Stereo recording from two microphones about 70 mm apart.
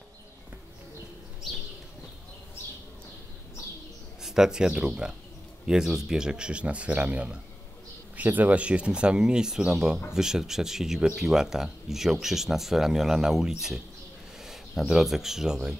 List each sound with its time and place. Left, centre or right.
4.2 s speech: centre